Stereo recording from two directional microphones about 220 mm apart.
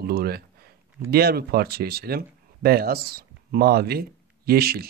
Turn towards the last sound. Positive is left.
turn(degrees=-45)  # may be behind; listen again after turning